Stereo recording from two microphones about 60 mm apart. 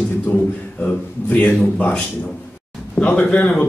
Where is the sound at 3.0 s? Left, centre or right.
Left.